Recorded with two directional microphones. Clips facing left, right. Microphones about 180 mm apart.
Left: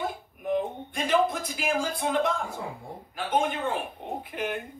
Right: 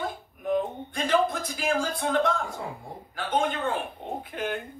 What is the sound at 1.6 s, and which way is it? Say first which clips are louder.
Speech: right 1 dB; 20° left (ahead or behind).